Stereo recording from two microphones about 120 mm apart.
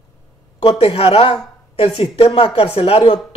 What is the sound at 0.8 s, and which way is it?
Speech, 50° left (ahead or behind).